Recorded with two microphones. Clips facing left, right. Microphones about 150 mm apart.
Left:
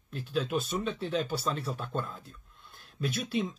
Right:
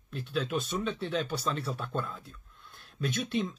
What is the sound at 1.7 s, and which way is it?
Speech, 45° left (ahead or behind).